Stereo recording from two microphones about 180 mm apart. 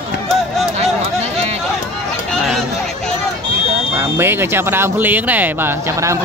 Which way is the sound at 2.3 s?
Centre (ahead or behind).